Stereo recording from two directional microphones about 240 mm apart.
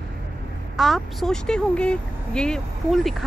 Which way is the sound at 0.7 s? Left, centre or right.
Centre.